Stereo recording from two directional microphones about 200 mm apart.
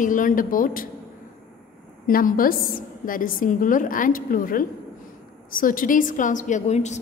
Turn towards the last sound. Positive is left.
turn(degrees=35)  # may be behind; listen again after turning